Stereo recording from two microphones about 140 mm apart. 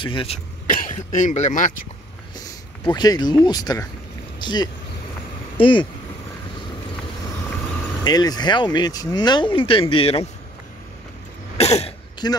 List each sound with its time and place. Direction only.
0.0 s speech: 40° left (ahead or behind)
0.7 s speech: 75° left (ahead or behind)
2.8 s speech: 30° left (ahead or behind)
8.0 s speech: 25° left (ahead or behind); by 10.2 s 45° left (ahead or behind)
11.5 s cough: 50° left (ahead or behind)
12.2 s speech: 30° left (ahead or behind)